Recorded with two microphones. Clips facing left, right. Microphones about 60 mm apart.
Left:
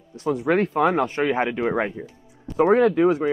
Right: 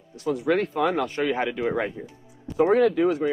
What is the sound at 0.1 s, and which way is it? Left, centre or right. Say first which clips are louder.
Speech: left 2 dB; left.